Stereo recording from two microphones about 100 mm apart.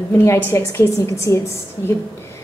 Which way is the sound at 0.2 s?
25° left (ahead or behind).